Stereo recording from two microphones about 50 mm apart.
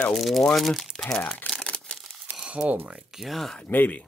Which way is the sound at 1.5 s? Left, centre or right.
Left.